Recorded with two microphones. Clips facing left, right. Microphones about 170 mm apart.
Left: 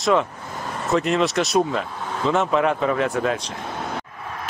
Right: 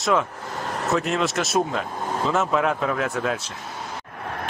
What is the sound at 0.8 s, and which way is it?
Speech, centre (ahead or behind).